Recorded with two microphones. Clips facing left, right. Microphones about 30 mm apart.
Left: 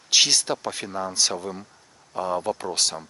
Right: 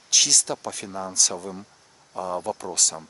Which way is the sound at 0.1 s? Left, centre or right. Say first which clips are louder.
Left 2 dB; left.